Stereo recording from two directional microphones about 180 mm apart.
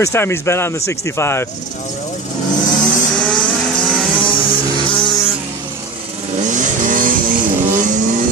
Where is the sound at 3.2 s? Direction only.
5° left (ahead or behind).